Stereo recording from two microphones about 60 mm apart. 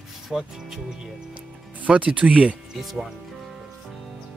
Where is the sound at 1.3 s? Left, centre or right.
Right.